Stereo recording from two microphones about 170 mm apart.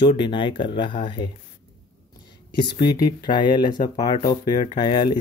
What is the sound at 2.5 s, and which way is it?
Speech, 25° left (ahead or behind).